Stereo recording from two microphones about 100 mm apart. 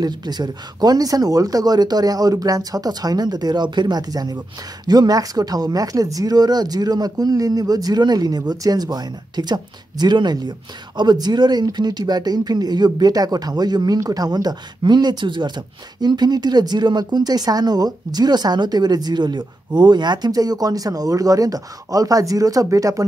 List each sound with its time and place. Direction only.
0.0 s speech: 45° right (ahead or behind)